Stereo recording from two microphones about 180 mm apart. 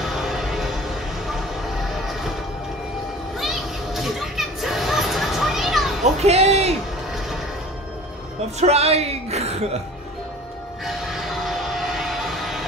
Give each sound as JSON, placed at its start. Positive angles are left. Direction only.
{"t": 0.0, "sound": "music", "side_deg": 0}
{"t": 3.3, "sound": "music", "side_deg": 0}
{"t": 6.2, "sound": "music", "side_deg": -35}
{"t": 8.5, "sound": "a woman's voice", "side_deg": -35}
{"t": 10.9, "sound": "a sound", "side_deg": 0}